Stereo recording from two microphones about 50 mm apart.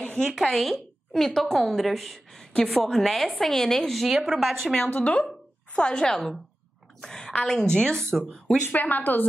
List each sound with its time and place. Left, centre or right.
0.0 s a sound: left
0.3 s a woman's voice: centre
4.0 s a woman's voice: centre
4.8 s speech: left
5.8 s a woman's voice: centre
7.0 s a sound: centre
7.4 s a woman's voice: centre
8.7 s speech: left